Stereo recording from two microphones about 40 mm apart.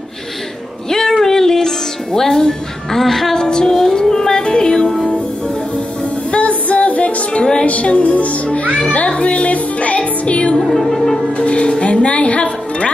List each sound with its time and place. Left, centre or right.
0.8 s music: centre
2.1 s a woman's voice: centre
3.4 s music: centre
6.3 s music: left
8.7 s speech: left
9.9 s music: left
10.6 s a woman's voice: centre
11.3 s speech: left